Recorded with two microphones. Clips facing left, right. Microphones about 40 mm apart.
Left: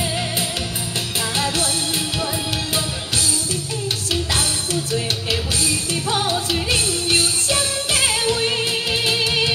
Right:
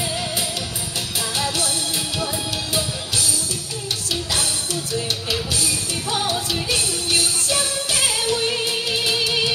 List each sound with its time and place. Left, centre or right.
1.3 s music: left
4.1 s music: left